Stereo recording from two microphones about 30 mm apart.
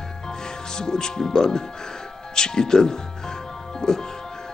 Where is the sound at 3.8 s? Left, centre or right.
Left.